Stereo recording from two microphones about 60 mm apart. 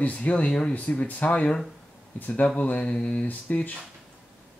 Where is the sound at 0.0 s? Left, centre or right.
Left.